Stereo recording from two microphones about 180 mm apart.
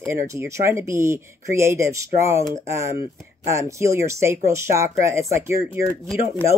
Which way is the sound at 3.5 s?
15° right (ahead or behind).